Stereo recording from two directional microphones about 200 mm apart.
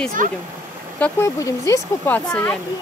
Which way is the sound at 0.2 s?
40° right (ahead or behind).